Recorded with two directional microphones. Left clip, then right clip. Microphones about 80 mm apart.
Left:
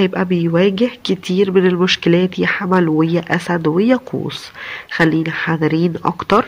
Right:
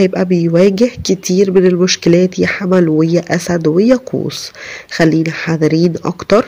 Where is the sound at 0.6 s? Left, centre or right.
Right.